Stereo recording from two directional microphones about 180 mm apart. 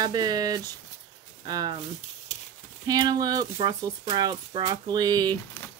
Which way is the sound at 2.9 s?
20° right (ahead or behind).